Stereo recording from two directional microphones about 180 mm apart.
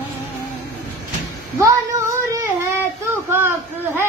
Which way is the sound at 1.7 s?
20° right (ahead or behind).